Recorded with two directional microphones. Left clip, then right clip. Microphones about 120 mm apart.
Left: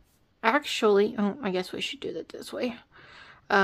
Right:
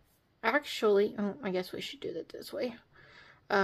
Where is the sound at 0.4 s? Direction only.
30° left (ahead or behind).